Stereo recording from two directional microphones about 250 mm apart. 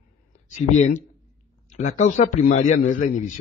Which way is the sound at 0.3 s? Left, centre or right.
Left.